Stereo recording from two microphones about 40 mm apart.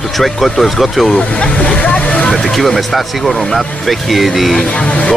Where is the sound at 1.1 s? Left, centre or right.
Left.